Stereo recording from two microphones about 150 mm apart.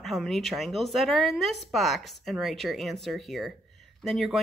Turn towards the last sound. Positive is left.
turn(degrees=0)  # may be behind; listen again after turning